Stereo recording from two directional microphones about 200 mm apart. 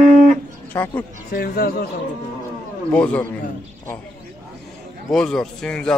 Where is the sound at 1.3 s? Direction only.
50° left (ahead or behind).